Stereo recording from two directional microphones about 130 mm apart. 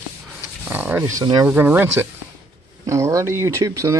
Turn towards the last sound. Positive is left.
turn(degrees=-25)  # may be behind; listen again after turning